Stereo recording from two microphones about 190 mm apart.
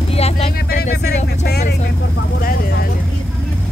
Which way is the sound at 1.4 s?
60° left (ahead or behind).